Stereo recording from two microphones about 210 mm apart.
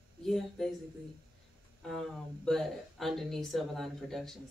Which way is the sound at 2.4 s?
Centre (ahead or behind).